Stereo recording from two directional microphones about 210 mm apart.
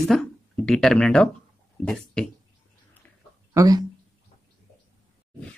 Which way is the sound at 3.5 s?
15° right (ahead or behind).